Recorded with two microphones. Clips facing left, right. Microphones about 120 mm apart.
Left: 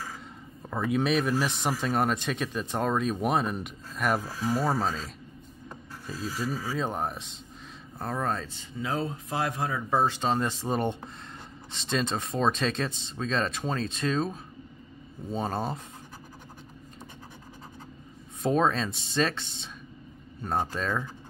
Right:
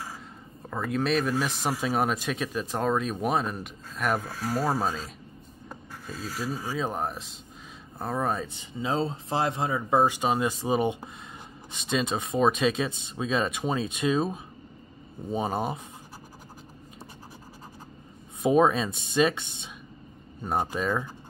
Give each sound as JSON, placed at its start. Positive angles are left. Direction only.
{"t": 0.7, "sound": "speech", "side_deg": 0}
{"t": 8.8, "sound": "speech", "side_deg": -25}
{"t": 18.4, "sound": "speech", "side_deg": -10}
{"t": 20.4, "sound": "speech", "side_deg": -10}